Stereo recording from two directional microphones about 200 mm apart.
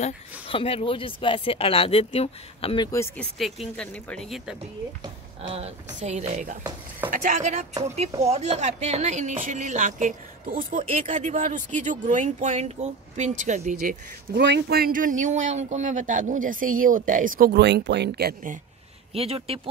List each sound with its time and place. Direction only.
0.0 s speech: 25° left (ahead or behind)
2.9 s speech: 15° left (ahead or behind)
3.3 s speech: centre (ahead or behind)
5.4 s speech: 30° right (ahead or behind)
14.3 s speech: 55° right (ahead or behind)
19.1 s speech: 30° right (ahead or behind)